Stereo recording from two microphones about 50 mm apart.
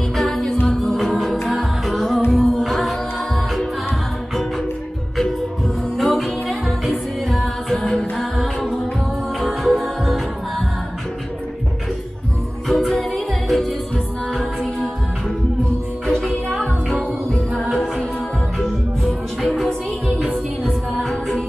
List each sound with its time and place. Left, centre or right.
0.1 s music: centre
5.9 s music: centre
12.6 s music: centre
16.1 s music: centre
18.6 s music: centre
21.0 s music: centre